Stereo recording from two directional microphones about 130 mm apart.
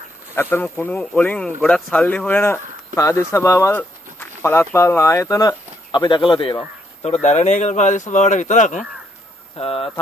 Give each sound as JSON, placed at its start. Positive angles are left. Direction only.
{"t": 0.4, "sound": "speech", "side_deg": 15}
{"t": 9.6, "sound": "speech", "side_deg": 50}